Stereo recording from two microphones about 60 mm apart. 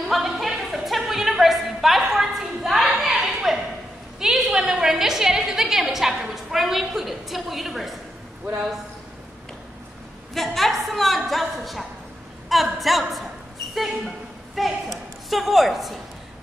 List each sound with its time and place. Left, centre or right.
0.1 s a sound: centre
4.2 s a woman's voice: centre
10.3 s a woman's voice: centre